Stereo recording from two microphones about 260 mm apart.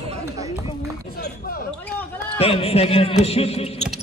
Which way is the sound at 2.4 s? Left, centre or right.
Left.